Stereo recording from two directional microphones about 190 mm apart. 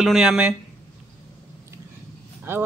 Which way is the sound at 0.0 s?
Centre (ahead or behind).